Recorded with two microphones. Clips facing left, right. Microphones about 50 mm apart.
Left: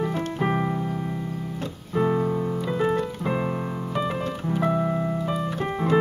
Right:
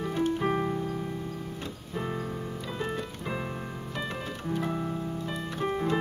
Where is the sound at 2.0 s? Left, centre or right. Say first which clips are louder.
Left 11 dB; left.